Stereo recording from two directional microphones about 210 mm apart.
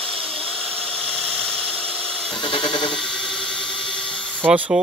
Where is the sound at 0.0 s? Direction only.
5° left (ahead or behind).